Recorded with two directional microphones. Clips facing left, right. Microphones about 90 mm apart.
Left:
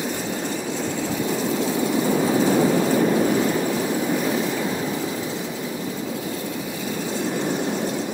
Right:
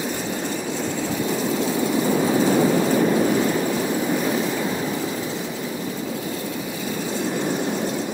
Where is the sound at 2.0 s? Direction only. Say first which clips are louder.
Even; centre (ahead or behind).